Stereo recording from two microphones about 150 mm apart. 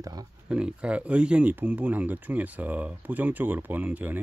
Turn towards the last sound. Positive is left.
turn(degrees=-10)  # may be behind; listen again after turning